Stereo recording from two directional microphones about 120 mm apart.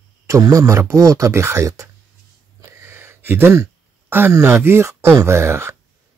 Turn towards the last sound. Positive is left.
turn(degrees=-20)  # may be behind; listen again after turning